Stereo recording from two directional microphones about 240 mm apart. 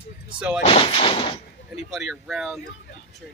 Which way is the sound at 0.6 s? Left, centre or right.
Left.